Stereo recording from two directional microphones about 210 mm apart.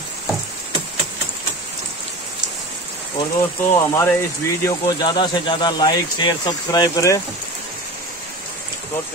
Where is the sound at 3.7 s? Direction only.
15° left (ahead or behind).